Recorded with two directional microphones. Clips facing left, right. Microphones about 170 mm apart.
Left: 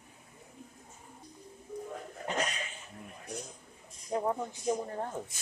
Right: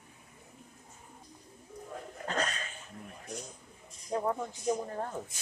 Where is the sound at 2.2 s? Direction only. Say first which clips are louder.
Even; 15° left (ahead or behind).